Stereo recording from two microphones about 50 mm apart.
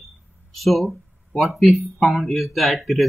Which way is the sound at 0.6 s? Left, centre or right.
Centre.